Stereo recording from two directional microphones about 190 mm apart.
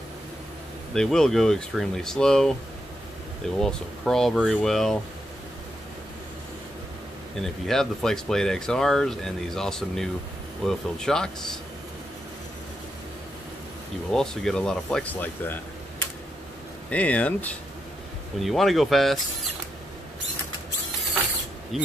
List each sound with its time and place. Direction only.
0.9 s speech: 5° left (ahead or behind)
3.5 s speech: 5° left (ahead or behind)
7.3 s speech: centre (ahead or behind)
14.1 s speech: 5° left (ahead or behind)
16.9 s speech: 5° left (ahead or behind)
21.7 s speech: centre (ahead or behind)